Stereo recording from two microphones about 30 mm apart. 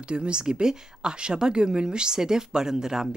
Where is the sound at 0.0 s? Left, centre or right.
Right.